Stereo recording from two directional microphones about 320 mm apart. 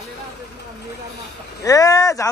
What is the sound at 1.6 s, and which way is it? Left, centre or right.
Speech, centre.